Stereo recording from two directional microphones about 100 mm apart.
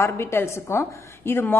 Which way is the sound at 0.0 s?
25° left (ahead or behind).